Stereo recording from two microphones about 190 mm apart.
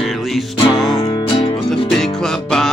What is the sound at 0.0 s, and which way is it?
Music, centre (ahead or behind).